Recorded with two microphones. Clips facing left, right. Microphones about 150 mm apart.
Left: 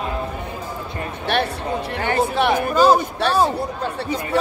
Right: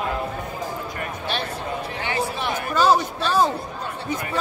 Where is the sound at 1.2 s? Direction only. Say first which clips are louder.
Left 8 dB; 65° left (ahead or behind).